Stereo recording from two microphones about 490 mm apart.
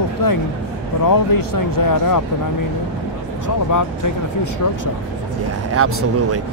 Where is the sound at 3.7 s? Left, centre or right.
Left.